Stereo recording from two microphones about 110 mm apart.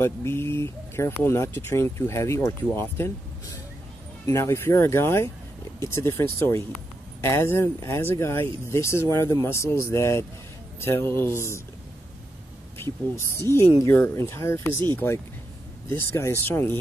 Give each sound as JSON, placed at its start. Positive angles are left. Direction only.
{"t": 0.0, "sound": "speech", "side_deg": 25}
{"t": 4.3, "sound": "speech", "side_deg": 25}
{"t": 12.7, "sound": "speech", "side_deg": 20}
{"t": 16.0, "sound": "speech", "side_deg": 25}